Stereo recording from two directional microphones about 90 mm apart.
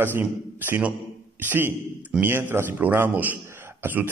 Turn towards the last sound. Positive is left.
turn(degrees=-20)  # may be behind; listen again after turning